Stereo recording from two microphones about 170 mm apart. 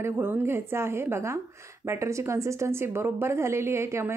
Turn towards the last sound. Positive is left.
turn(degrees=-15)  # may be behind; listen again after turning